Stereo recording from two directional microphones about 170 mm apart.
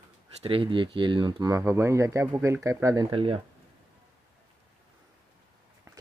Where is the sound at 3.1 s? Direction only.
30° right (ahead or behind).